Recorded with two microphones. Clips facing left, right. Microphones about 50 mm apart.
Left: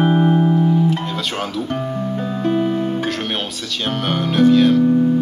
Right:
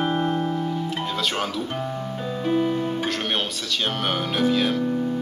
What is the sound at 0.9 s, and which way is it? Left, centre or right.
Guitar, centre.